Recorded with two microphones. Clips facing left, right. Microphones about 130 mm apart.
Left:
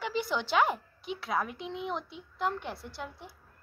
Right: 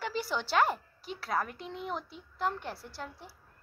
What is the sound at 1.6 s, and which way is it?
Speech, 45° right (ahead or behind).